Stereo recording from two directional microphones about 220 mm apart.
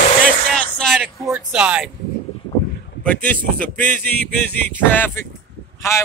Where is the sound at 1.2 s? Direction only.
5° right (ahead or behind).